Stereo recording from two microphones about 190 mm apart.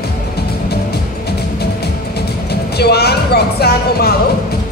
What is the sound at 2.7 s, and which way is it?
Speech, 60° left (ahead or behind).